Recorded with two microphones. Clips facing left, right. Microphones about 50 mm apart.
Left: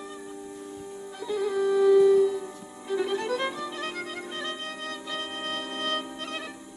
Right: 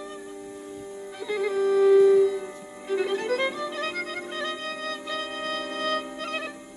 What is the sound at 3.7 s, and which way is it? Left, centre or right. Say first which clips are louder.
Music: right 3 dB; right.